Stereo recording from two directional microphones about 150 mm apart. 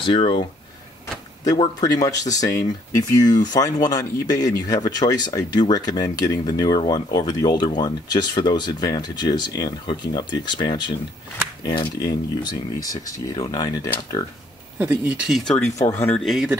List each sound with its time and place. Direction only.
0.0 s speech: 35° left (ahead or behind)
1.6 s speech: 25° left (ahead or behind)
14.8 s speech: 10° right (ahead or behind)
15.9 s speech: 15° left (ahead or behind)
16.2 s speech: centre (ahead or behind)